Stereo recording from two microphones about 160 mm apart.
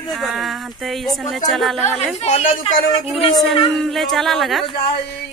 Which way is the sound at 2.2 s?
40° left (ahead or behind).